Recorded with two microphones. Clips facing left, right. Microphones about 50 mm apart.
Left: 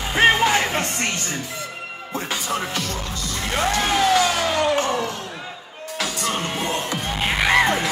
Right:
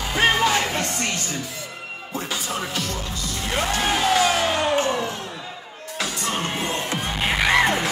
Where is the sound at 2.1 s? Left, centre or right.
Left.